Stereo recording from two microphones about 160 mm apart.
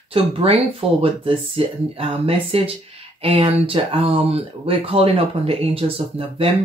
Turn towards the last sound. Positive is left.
turn(degrees=-35)  # may be behind; listen again after turning